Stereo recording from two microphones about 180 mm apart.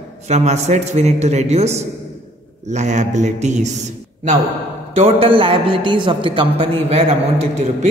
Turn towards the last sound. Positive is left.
turn(degrees=-35)  # may be behind; listen again after turning